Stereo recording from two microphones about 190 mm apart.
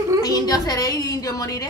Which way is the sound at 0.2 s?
20° left (ahead or behind).